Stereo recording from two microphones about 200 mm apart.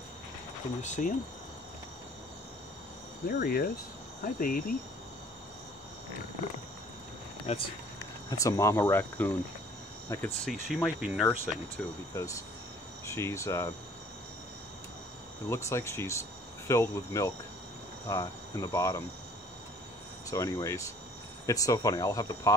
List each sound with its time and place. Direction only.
0.8 s speech: 35° left (ahead or behind)
3.3 s cricket: 50° left (ahead or behind)
7.5 s speech: 30° left (ahead or behind)
8.3 s speech: 15° left (ahead or behind)
10.4 s speech: centre (ahead or behind)
12.1 s speech: 15° left (ahead or behind)
15.5 s speech: 15° left (ahead or behind)
20.2 s speech: 15° left (ahead or behind)